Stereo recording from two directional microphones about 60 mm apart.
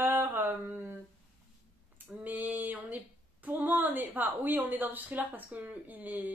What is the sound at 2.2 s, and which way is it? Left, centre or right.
A woman's voice, right.